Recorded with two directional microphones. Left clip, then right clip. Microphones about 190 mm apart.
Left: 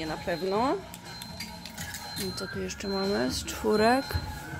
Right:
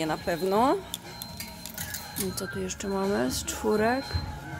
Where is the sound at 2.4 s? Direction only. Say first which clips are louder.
Right 1 dB; 10° right (ahead or behind).